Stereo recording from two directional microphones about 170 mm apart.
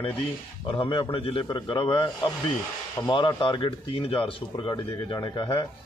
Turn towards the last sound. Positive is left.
turn(degrees=30)  # may be behind; listen again after turning